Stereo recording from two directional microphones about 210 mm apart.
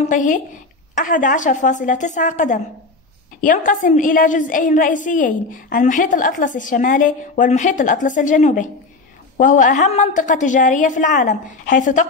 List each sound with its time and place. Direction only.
0.0 s a woman's voice: 35° left (ahead or behind)